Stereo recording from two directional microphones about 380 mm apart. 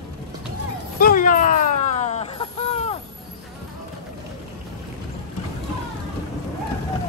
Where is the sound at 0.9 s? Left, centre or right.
Left.